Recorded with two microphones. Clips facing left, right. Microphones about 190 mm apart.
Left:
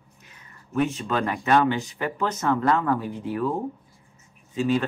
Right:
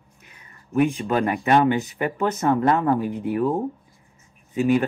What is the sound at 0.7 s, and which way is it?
Speech, 15° right (ahead or behind).